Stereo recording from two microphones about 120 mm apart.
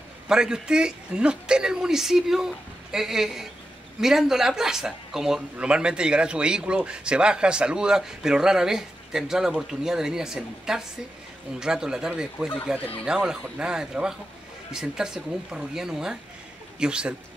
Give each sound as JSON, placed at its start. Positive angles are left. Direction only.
{"t": 0.3, "sound": "a man's voice", "side_deg": -5}